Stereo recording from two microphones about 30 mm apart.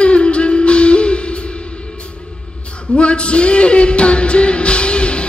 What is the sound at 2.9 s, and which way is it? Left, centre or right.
Music, left.